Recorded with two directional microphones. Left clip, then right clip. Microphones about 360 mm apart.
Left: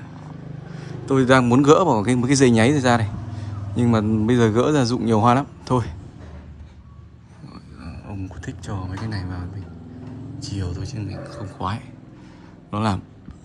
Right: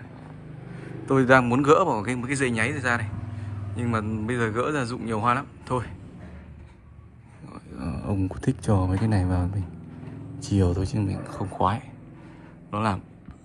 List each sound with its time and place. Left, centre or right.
0.7 s speech: centre
8.7 s a man's voice: right
10.5 s speech: centre